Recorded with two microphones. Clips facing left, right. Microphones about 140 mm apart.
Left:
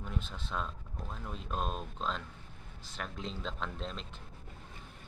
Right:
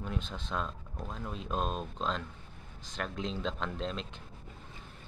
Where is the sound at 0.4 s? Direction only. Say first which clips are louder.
Right 2 dB; 5° left (ahead or behind).